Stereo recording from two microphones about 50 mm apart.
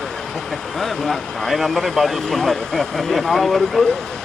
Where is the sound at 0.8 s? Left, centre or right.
Centre.